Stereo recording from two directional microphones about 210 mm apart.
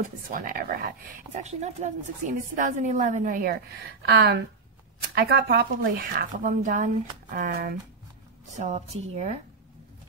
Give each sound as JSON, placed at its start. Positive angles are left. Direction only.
{"t": 0.0, "sound": "speech", "side_deg": -40}